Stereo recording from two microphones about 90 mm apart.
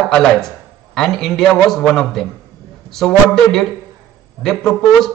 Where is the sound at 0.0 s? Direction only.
5° left (ahead or behind).